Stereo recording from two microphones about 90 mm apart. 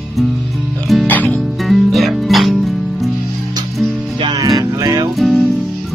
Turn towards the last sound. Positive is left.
turn(degrees=0)  # may be behind; listen again after turning